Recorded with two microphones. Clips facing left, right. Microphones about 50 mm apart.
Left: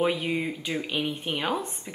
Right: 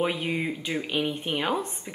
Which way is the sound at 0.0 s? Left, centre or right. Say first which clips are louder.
Left 1 dB; centre.